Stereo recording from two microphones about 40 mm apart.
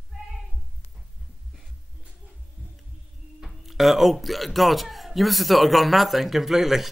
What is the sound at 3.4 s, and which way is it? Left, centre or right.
Speech, centre.